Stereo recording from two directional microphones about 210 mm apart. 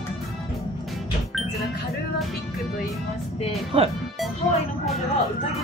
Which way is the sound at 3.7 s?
25° right (ahead or behind).